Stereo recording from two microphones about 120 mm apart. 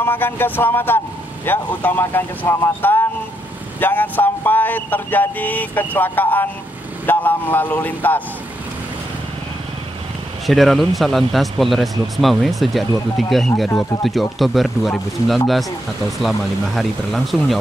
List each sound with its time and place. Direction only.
0.0 s speech: 20° left (ahead or behind)
10.4 s speech: centre (ahead or behind)